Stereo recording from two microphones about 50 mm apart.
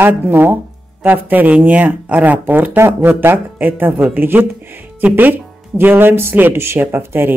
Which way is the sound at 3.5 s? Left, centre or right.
Right.